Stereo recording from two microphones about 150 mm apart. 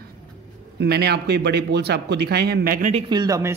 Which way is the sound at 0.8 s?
90° right.